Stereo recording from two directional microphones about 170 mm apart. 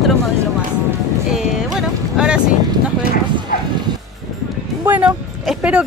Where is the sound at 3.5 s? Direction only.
60° left (ahead or behind).